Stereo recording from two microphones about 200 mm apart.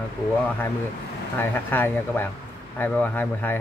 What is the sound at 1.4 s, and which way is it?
Speech, 10° left (ahead or behind).